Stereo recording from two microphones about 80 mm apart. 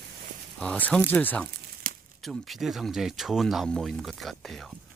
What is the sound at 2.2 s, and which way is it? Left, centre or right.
Speech, centre.